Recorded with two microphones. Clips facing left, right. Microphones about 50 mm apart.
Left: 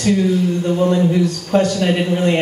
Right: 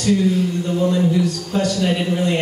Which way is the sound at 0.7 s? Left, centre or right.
Left.